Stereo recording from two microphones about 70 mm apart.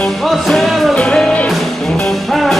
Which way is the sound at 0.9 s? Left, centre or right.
Centre.